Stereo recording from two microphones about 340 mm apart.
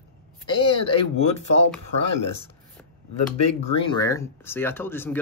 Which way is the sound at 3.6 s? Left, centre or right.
Centre.